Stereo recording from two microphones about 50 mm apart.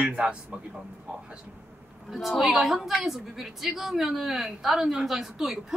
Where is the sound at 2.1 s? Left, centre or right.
Centre.